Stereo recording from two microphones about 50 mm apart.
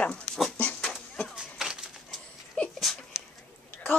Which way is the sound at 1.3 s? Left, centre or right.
Centre.